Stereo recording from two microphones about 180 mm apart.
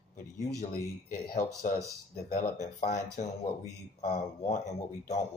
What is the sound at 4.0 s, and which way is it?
Speech, 40° left (ahead or behind).